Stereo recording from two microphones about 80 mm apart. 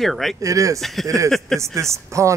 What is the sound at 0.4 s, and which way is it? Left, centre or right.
Speech, right.